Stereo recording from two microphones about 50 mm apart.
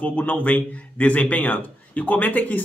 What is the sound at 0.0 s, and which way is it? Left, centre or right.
Speech, left.